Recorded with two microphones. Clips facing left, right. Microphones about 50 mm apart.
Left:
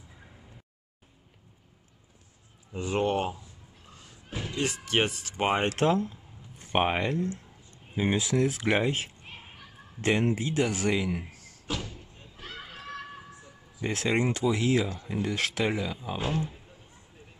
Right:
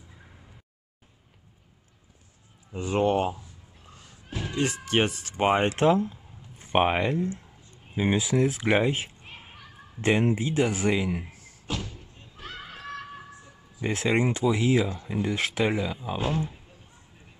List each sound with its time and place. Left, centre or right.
2.7 s speech: centre
4.6 s speech: centre
5.7 s a man's voice: right
11.6 s door: centre
13.7 s speech: right